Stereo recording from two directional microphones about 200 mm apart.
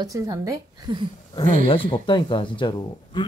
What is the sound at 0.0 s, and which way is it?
A woman's voice, 15° right (ahead or behind).